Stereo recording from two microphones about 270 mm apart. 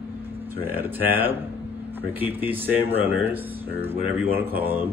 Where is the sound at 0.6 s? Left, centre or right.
Centre.